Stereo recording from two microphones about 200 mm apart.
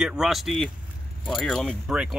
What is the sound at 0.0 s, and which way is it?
Speech, 5° right (ahead or behind).